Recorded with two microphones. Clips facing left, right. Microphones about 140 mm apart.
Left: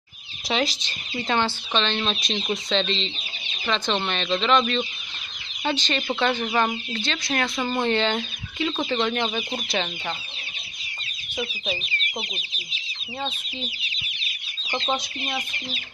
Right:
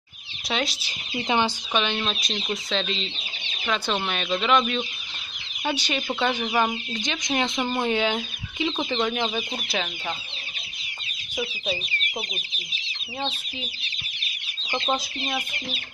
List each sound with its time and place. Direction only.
0.5 s speech: centre (ahead or behind)
1.1 s speech: 15° right (ahead or behind)
7.6 s speech: 5° right (ahead or behind)
8.9 s speech: 5° right (ahead or behind)
14.8 s speech: centre (ahead or behind)